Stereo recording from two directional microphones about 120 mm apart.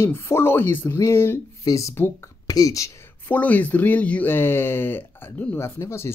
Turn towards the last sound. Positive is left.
turn(degrees=20)  # may be behind; listen again after turning